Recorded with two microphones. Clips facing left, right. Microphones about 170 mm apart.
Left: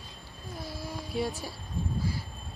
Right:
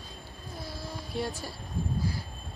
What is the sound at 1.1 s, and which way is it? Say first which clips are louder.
Music: left 2 dB; centre (ahead or behind).